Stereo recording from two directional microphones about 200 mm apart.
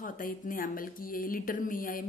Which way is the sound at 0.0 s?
45° left (ahead or behind).